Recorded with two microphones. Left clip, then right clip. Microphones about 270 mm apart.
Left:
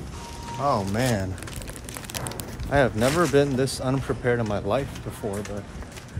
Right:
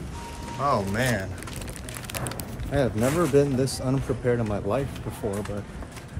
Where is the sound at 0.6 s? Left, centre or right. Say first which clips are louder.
Even; centre.